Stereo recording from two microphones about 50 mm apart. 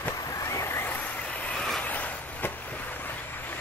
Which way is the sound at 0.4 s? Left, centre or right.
Left.